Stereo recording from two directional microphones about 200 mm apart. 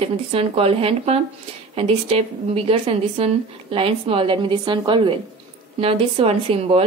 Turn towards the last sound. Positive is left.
turn(degrees=-30)  # may be behind; listen again after turning